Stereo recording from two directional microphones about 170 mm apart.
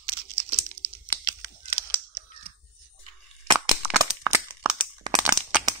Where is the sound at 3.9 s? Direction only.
15° right (ahead or behind).